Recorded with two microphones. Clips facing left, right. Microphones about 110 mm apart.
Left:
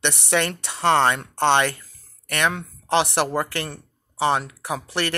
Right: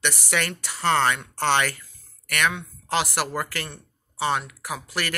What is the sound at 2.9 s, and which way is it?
Speech, 25° left (ahead or behind).